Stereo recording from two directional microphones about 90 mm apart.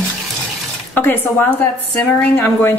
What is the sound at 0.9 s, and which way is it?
Speech, 20° left (ahead or behind).